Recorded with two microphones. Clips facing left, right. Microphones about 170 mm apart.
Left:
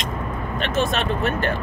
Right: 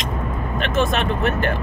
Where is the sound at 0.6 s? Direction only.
50° right (ahead or behind).